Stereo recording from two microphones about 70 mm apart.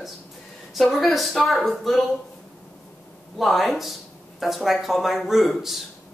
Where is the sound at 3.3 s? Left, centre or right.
Centre.